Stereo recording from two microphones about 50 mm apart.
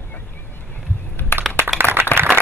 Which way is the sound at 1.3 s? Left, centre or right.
Left.